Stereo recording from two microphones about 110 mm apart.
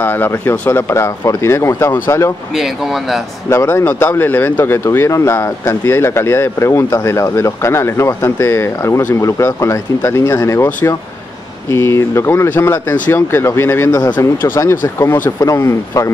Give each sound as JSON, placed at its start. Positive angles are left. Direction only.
{"t": 0.0, "sound": "speech", "side_deg": 20}
{"t": 2.5, "sound": "speech", "side_deg": 0}
{"t": 3.4, "sound": "speech", "side_deg": 25}